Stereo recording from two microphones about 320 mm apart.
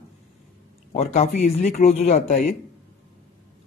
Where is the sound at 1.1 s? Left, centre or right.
Left.